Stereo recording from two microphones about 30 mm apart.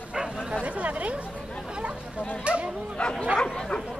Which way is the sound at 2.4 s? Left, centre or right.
Right.